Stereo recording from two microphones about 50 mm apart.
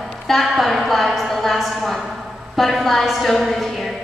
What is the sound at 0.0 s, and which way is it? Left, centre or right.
A woman's voice, centre.